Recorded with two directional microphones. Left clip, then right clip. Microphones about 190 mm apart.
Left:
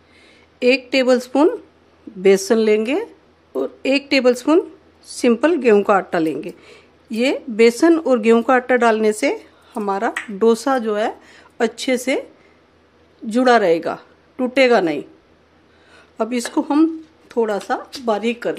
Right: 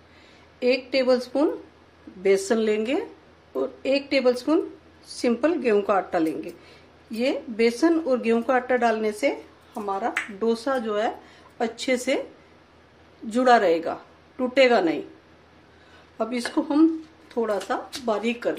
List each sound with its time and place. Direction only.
0.6 s a woman's voice: 50° left (ahead or behind)
13.3 s a woman's voice: 35° left (ahead or behind)
16.2 s a woman's voice: 45° left (ahead or behind)